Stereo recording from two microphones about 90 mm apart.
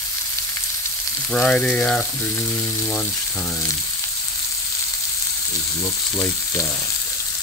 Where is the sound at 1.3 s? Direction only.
10° left (ahead or behind).